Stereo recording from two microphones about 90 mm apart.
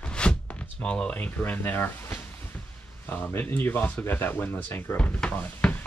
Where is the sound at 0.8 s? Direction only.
15° left (ahead or behind).